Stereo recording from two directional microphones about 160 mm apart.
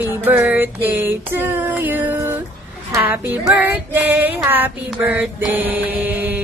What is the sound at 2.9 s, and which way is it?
Speech, 10° right (ahead or behind).